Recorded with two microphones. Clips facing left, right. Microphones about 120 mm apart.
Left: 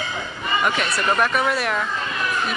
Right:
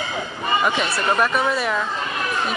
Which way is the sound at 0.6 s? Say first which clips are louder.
Left 1 dB; 20° right (ahead or behind).